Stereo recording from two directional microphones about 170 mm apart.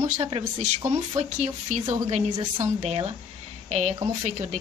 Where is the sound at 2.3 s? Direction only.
25° right (ahead or behind).